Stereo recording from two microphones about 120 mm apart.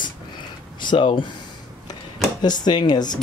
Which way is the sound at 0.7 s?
40° left (ahead or behind).